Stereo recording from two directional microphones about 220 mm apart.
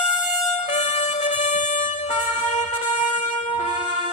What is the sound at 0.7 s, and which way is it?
Music, 30° left (ahead or behind).